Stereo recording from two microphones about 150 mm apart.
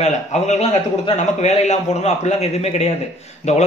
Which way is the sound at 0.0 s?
50° left (ahead or behind).